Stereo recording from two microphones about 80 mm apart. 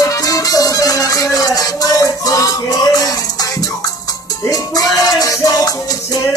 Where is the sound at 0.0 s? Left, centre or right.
Left.